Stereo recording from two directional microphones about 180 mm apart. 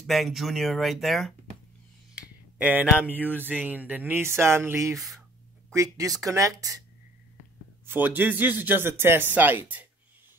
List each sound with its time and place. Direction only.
0.0 s speech: centre (ahead or behind)
2.6 s speech: 10° right (ahead or behind)
4.9 s speech: centre (ahead or behind)
5.8 s speech: 20° right (ahead or behind)
7.8 s speech: 10° right (ahead or behind)